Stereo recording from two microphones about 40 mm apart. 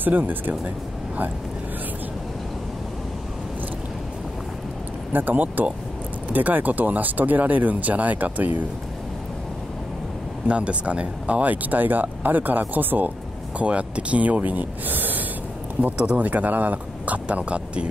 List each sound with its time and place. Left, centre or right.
0.0 s speech: right
5.1 s speech: right
10.5 s speech: right
13.6 s speech: right